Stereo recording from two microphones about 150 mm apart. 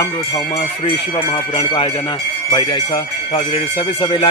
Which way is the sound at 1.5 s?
35° left (ahead or behind).